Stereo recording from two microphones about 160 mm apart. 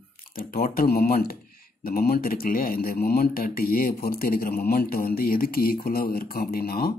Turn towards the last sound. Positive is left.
turn(degrees=70)  # may be behind; listen again after turning